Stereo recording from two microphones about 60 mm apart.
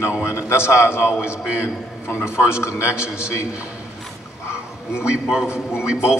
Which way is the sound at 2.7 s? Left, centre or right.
Centre.